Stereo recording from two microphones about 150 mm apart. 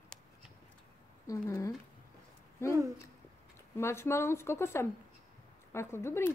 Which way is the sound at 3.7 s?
15° left (ahead or behind).